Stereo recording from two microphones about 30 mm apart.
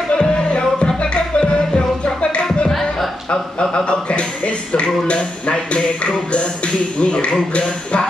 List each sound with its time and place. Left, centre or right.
0.2 s music: left
3.3 s a sound: left
4.7 s speech: left